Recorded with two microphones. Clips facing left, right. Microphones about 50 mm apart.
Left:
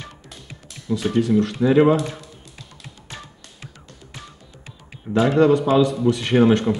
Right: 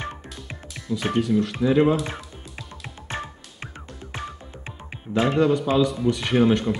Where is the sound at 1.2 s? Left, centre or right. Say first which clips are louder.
Left 4 dB; centre.